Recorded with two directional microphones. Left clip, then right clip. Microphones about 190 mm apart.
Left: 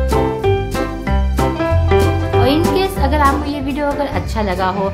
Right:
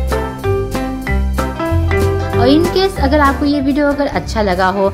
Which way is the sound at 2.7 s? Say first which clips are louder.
Right 3 dB; 30° right (ahead or behind).